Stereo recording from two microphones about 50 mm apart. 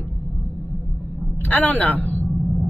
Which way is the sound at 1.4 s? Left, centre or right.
Left.